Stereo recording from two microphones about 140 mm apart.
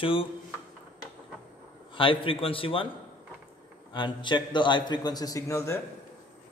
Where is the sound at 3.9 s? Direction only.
35° left (ahead or behind).